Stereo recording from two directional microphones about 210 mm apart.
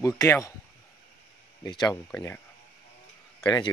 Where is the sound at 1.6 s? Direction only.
20° left (ahead or behind).